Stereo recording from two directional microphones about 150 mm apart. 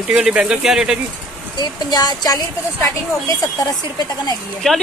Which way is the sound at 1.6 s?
25° left (ahead or behind).